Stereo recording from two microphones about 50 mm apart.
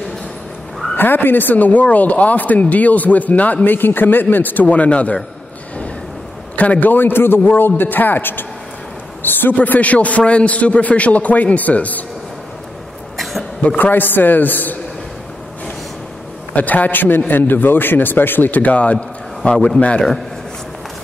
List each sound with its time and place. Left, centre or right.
0.9 s speech: left
3.6 s speech: left
6.5 s a man's voice: left
13.2 s a sound: centre
13.7 s speech: left
16.5 s speech: left